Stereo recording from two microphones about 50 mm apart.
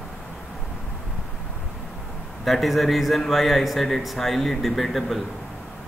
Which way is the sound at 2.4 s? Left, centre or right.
Centre.